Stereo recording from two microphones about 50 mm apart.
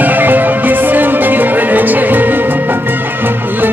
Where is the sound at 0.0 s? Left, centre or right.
Right.